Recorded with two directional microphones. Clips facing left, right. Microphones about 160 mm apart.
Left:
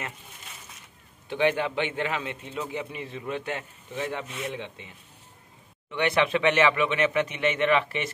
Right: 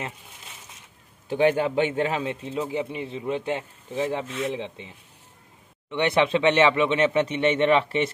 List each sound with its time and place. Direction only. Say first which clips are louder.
1.3 s speech: right 4 dB; 40° right (ahead or behind)